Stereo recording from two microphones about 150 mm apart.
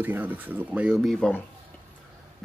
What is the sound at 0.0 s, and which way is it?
Speech, 10° right (ahead or behind).